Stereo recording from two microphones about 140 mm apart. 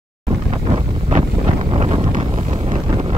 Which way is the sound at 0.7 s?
40° right (ahead or behind).